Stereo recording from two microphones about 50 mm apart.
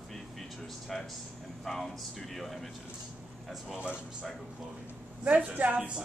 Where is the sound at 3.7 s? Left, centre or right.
Centre.